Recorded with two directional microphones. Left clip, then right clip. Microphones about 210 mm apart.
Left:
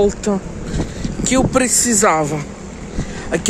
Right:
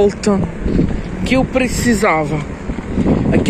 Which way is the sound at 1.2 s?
25° left (ahead or behind).